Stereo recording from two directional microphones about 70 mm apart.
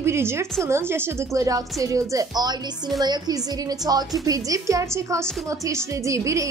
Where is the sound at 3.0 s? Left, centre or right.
Right.